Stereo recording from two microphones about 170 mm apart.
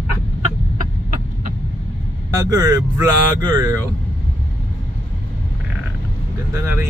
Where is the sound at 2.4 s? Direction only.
20° right (ahead or behind).